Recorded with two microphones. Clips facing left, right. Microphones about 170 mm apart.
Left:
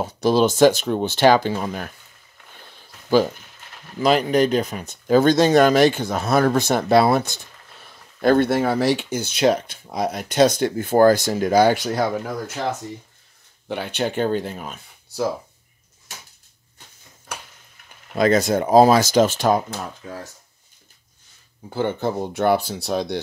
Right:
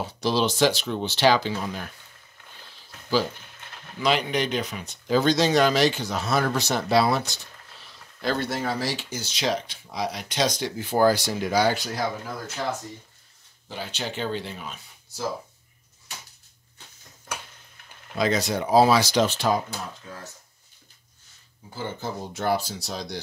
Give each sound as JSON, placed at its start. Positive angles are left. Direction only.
{"t": 0.0, "sound": "speech", "side_deg": 50}
{"t": 4.0, "sound": "speech", "side_deg": 40}
{"t": 13.7, "sound": "speech", "side_deg": 60}
{"t": 18.1, "sound": "speech", "side_deg": 50}
{"t": 21.6, "sound": "speech", "side_deg": 65}